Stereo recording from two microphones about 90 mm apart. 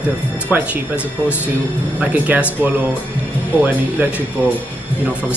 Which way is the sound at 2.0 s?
15° right (ahead or behind).